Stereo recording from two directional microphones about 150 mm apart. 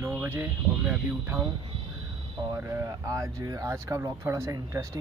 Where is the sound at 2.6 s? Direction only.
15° right (ahead or behind).